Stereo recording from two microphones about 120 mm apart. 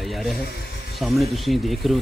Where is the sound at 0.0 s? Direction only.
Centre (ahead or behind).